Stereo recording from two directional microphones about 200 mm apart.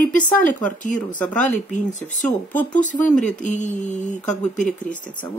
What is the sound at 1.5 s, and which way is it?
Speech, 35° left (ahead or behind).